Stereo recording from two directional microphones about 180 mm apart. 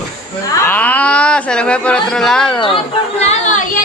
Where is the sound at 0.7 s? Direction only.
10° left (ahead or behind).